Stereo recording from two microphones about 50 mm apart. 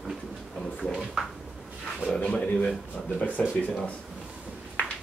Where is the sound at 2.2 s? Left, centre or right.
Left.